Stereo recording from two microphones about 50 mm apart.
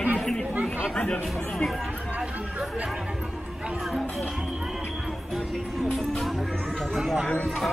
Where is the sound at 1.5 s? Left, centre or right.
Centre.